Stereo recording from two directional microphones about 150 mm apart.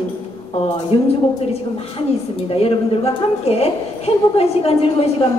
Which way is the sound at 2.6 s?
40° left (ahead or behind).